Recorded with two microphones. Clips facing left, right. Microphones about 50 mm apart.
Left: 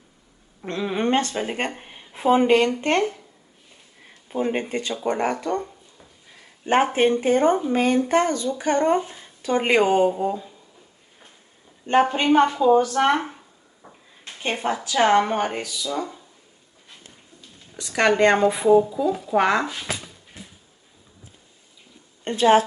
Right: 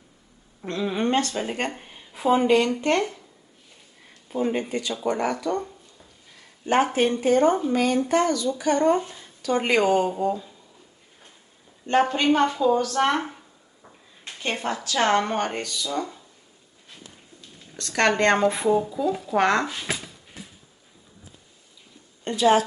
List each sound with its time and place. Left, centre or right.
0.7 s speech: left
4.3 s speech: left
10.0 s a woman's voice: centre
11.8 s a woman's voice: centre
17.4 s speech: centre
22.2 s a woman's voice: left